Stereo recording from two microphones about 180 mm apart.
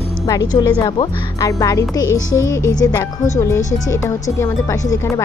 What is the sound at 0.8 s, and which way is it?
A woman's voice, 20° left (ahead or behind).